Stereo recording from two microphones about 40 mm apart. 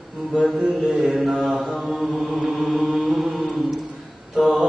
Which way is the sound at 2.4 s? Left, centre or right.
Centre.